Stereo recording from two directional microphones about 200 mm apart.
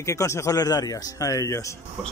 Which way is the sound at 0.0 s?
15° left (ahead or behind).